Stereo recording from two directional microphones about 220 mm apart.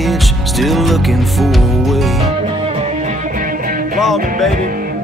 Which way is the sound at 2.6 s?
30° right (ahead or behind).